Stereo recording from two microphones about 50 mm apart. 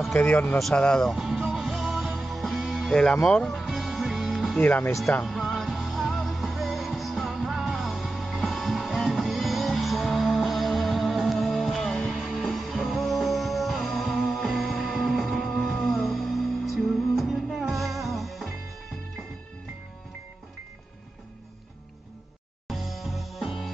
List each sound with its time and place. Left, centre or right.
0.2 s speech: left
0.7 s speech: centre
1.1 s music: centre
2.9 s speech: centre
3.4 s music: centre
4.6 s speech: left
5.2 s music: centre
22.7 s music: centre